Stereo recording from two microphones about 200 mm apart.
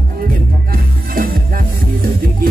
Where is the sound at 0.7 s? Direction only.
45° right (ahead or behind).